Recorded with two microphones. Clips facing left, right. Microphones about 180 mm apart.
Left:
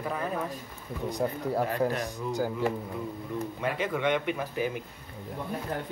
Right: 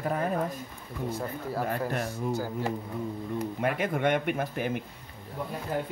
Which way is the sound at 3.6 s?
50° right (ahead or behind).